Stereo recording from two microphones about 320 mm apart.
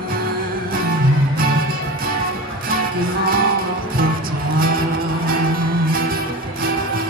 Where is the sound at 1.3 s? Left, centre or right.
Right.